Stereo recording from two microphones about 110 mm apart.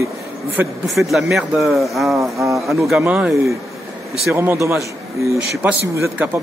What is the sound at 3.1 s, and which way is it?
A man's voice, 10° right (ahead or behind).